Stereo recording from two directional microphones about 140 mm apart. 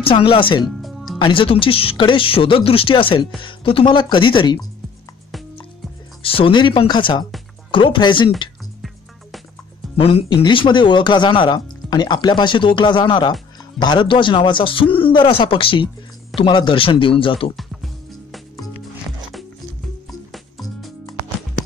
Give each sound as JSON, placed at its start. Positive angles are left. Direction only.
{"t": 0.0, "sound": "speech", "side_deg": 40}
{"t": 0.7, "sound": "music", "side_deg": 0}
{"t": 1.1, "sound": "speech", "side_deg": 35}
{"t": 6.2, "sound": "speech", "side_deg": 40}
{"t": 9.9, "sound": "speech", "side_deg": 40}
{"t": 20.1, "sound": "music", "side_deg": 0}